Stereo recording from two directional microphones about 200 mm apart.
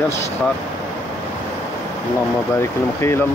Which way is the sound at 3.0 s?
15° left (ahead or behind).